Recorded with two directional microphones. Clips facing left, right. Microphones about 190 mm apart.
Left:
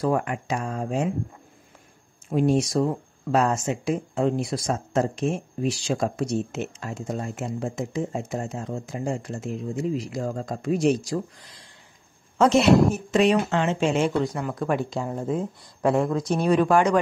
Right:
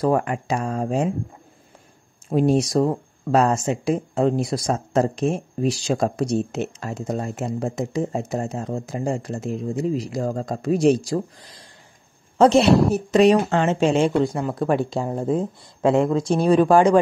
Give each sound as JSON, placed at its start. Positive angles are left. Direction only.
{"t": 0.0, "sound": "speech", "side_deg": -40}
{"t": 2.2, "sound": "speech", "side_deg": -35}
{"t": 12.4, "sound": "speech", "side_deg": -35}